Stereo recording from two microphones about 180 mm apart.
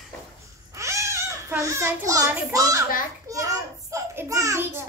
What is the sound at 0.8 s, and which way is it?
A child's voice, 15° right (ahead or behind).